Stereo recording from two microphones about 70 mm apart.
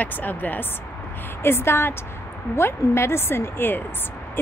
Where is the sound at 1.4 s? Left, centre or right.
Left.